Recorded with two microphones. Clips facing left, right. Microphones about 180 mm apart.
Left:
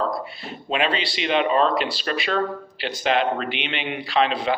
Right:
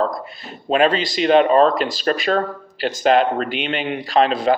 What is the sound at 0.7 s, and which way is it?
Speech, 40° right (ahead or behind).